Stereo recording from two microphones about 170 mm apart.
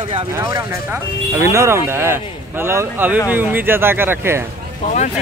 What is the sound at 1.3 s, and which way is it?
Speech, 15° right (ahead or behind).